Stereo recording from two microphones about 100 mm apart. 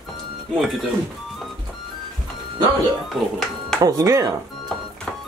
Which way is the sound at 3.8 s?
30° right (ahead or behind).